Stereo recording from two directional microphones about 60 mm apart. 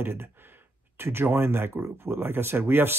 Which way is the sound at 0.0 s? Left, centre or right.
Right.